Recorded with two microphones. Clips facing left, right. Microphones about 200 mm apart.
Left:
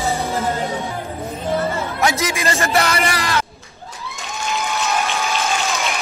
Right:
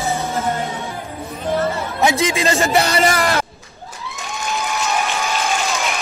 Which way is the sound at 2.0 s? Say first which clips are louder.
Right 4 dB; 25° right (ahead or behind).